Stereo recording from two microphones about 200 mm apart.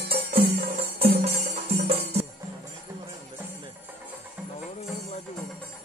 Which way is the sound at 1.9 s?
30° right (ahead or behind).